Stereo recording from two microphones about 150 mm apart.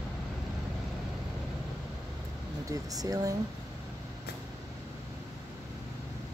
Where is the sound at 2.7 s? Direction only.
25° right (ahead or behind).